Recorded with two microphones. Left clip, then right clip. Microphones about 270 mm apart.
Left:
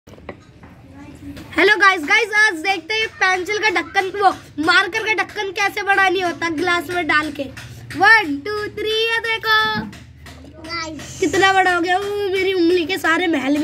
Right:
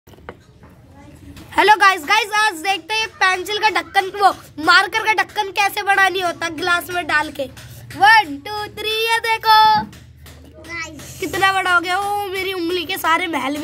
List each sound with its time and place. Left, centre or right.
1.5 s a woman's voice: right
11.3 s a woman's voice: centre